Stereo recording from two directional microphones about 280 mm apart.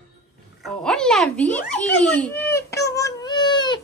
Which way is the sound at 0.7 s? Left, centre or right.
Centre.